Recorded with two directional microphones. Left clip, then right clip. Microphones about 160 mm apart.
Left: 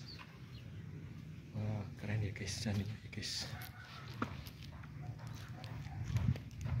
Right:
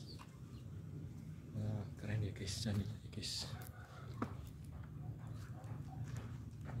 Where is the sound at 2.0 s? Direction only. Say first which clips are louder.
Left 3 dB; 25° left (ahead or behind).